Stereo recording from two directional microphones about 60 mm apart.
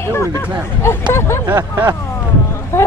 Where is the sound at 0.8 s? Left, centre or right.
Left.